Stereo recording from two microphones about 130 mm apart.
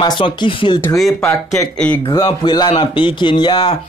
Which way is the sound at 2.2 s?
35° left (ahead or behind).